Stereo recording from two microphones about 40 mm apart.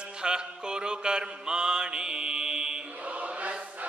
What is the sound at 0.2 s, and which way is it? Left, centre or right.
Mantra, right.